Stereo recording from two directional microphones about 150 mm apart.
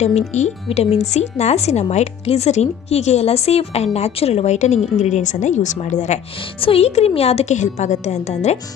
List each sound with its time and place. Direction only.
0.0 s speech: 50° left (ahead or behind)